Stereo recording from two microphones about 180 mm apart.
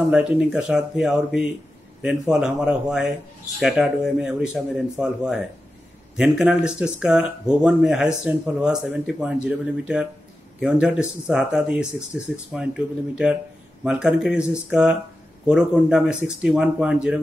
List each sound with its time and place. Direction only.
0.1 s speech: 5° right (ahead or behind)
13.1 s speech: 5° right (ahead or behind)